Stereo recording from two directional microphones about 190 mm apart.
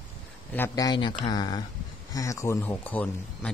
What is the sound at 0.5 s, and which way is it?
Speech, 15° left (ahead or behind).